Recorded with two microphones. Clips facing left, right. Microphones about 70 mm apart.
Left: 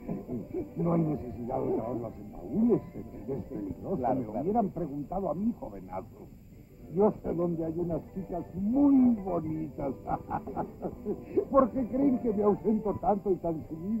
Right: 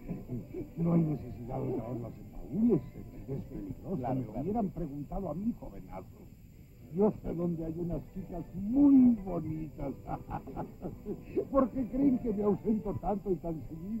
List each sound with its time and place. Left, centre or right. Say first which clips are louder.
0.6 s speech: left 2 dB; left